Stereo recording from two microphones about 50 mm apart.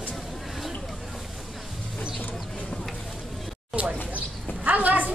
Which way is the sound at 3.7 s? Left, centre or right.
Right.